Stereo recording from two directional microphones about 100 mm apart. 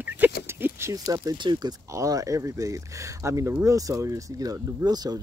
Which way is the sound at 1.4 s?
50° right (ahead or behind).